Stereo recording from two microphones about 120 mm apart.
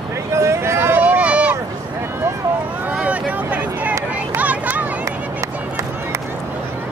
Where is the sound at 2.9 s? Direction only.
10° right (ahead or behind).